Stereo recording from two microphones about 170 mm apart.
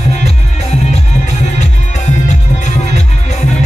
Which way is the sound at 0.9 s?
40° left (ahead or behind).